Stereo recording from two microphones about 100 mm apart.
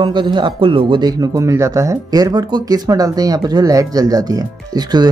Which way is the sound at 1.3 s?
30° right (ahead or behind).